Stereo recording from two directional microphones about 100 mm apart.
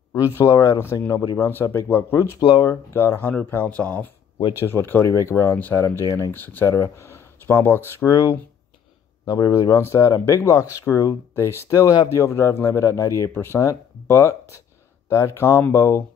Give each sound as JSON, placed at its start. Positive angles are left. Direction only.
{"t": 0.1, "sound": "speech", "side_deg": 30}
{"t": 6.3, "sound": "speech", "side_deg": 20}